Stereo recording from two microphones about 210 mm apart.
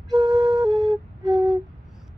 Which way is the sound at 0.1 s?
Centre (ahead or behind).